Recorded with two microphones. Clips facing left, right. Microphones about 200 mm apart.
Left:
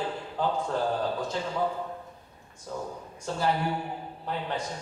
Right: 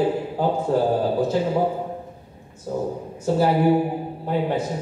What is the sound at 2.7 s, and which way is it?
Speech, 25° right (ahead or behind).